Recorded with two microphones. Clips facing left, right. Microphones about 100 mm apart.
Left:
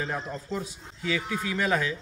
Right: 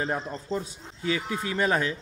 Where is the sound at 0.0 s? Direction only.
35° right (ahead or behind).